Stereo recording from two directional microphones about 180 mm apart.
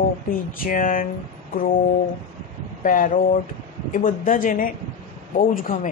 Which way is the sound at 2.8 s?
50° left (ahead or behind).